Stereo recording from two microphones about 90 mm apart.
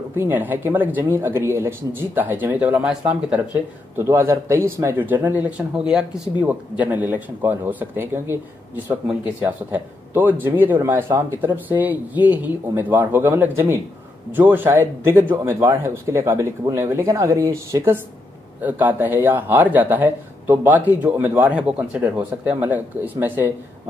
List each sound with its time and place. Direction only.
0.2 s speech: 20° right (ahead or behind)
3.9 s speech: 30° right (ahead or behind)
18.6 s speech: 20° right (ahead or behind)